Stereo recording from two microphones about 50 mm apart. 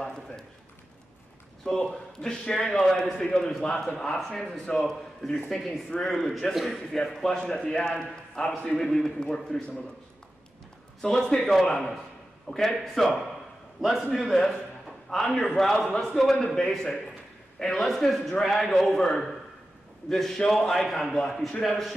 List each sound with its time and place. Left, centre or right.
1.9 s a man's voice: centre
2.9 s a man's voice: centre
3.2 s a man's voice: centre
3.9 s a man's voice: centre
6.5 s a man's voice: centre
7.5 s a man's voice: centre
8.7 s a man's voice: centre
11.0 s a man's voice: centre